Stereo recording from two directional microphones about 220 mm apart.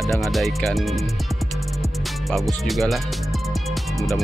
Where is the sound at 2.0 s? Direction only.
Centre (ahead or behind).